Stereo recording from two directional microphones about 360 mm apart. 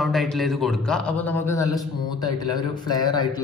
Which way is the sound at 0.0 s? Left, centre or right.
Centre.